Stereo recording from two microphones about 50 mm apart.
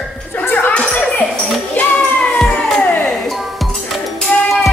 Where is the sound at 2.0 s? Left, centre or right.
Left.